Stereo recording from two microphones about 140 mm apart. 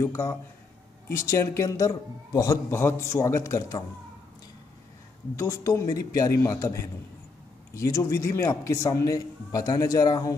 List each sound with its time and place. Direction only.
0.0 s a man's voice: 20° left (ahead or behind)
5.3 s a man's voice: 20° left (ahead or behind)